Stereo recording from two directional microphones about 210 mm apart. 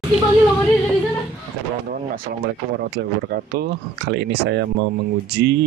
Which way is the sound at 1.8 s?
45° right (ahead or behind).